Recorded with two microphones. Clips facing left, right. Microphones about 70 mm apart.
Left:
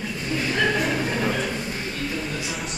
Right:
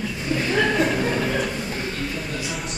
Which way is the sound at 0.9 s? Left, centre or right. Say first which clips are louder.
Right 1 dB; centre.